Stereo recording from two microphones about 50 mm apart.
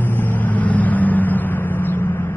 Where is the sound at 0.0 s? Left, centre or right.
Left.